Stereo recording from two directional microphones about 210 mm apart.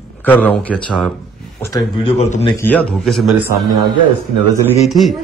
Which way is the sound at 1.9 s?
30° left (ahead or behind).